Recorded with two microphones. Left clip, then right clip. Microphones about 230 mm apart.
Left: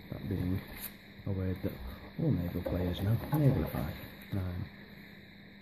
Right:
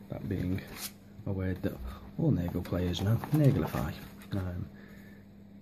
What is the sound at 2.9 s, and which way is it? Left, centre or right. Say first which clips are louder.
Speech: right 3 dB; centre.